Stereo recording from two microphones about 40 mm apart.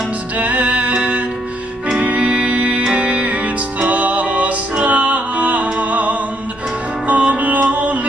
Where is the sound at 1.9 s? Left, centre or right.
Right.